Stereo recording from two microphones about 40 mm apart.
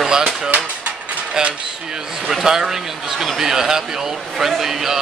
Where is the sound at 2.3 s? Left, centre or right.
Centre.